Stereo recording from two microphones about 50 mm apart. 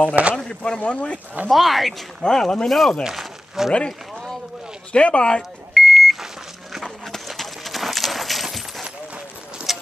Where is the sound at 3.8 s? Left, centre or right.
Centre.